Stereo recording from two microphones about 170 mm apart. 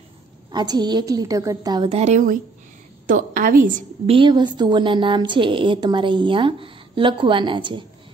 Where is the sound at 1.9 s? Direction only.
40° right (ahead or behind).